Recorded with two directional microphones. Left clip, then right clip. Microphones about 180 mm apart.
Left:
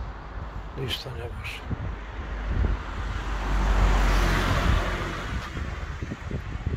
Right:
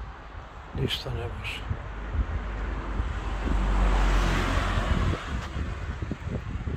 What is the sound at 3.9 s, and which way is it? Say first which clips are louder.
Vehicle: left 2 dB; 45° left (ahead or behind).